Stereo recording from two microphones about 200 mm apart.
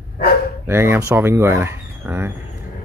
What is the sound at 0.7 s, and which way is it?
Speech, 10° right (ahead or behind).